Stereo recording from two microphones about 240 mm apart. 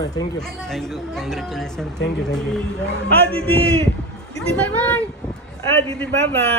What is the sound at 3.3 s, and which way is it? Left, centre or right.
Speech, right.